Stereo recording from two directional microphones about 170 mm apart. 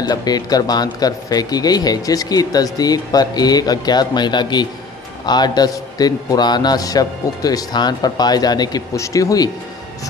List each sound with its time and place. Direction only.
0.0 s speech: 25° left (ahead or behind)